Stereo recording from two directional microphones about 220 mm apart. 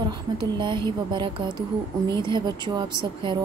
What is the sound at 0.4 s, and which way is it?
Speech, 20° right (ahead or behind).